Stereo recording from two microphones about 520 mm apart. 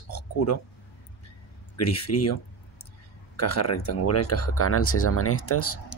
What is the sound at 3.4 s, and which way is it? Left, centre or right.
Speech, left.